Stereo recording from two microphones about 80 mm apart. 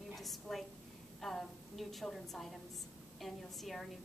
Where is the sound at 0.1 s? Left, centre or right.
Centre.